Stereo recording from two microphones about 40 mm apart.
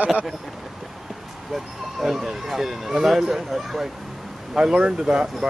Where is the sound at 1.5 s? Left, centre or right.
Centre.